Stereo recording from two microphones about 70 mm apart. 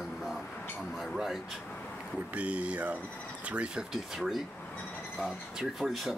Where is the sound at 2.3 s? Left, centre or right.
Centre.